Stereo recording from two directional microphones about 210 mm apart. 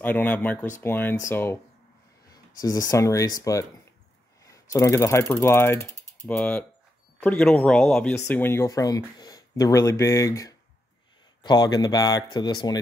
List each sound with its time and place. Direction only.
0.0 s speech: 10° left (ahead or behind)
5.9 s mechanisms: 10° left (ahead or behind)
7.2 s speech: 10° left (ahead or behind)